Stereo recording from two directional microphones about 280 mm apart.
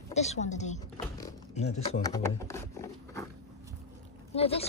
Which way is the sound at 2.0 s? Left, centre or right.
Centre.